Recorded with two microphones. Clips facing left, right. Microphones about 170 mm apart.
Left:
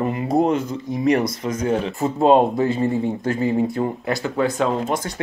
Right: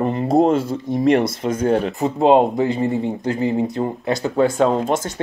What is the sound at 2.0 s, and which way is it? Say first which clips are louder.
Speech: even; 20° right (ahead or behind).